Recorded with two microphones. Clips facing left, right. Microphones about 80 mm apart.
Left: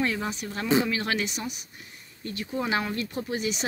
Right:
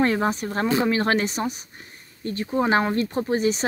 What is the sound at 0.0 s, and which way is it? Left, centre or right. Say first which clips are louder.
Speech: right 7 dB; right.